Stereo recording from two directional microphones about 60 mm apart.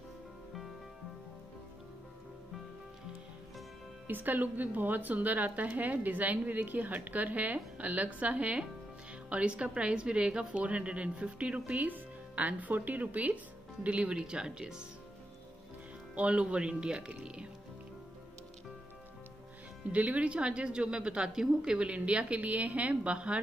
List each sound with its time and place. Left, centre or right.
4.1 s a woman's voice: right; by 14.9 s centre
16.2 s a woman's voice: right
19.9 s a woman's voice: right